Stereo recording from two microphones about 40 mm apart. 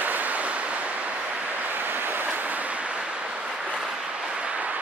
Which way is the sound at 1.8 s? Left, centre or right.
Right.